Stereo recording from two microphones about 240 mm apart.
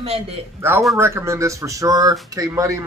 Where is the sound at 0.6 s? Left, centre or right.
Centre.